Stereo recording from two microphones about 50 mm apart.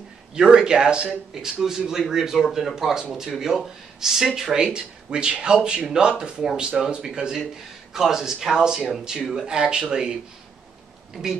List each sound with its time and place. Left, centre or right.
0.3 s speech: centre